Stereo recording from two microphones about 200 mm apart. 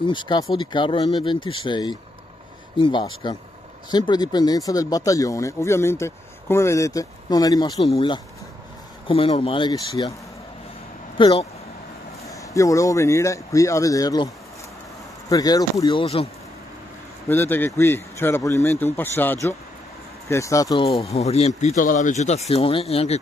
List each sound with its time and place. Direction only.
0.0 s speech: 25° left (ahead or behind)
11.1 s speech: 25° left (ahead or behind)
12.3 s speech: 15° left (ahead or behind)
17.3 s speech: 10° left (ahead or behind)
20.8 s speech: 30° left (ahead or behind)